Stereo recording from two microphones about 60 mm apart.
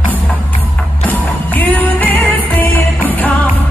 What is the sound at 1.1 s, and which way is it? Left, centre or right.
Music, left.